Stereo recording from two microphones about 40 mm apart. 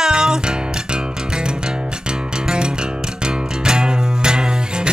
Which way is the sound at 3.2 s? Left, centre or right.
Right.